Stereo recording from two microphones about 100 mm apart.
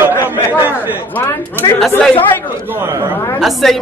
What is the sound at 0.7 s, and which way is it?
Chatter, 20° right (ahead or behind).